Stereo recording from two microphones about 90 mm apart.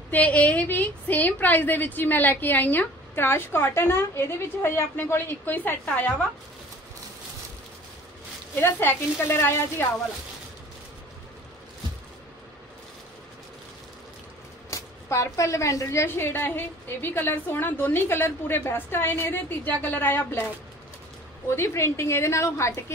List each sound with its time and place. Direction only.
0.1 s a woman's voice: 15° left (ahead or behind)
8.5 s a woman's voice: 25° left (ahead or behind)
14.7 s a woman's voice: 35° left (ahead or behind)
21.5 s a woman's voice: 30° left (ahead or behind)